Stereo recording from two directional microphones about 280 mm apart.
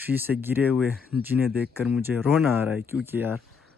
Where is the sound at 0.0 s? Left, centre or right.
Centre.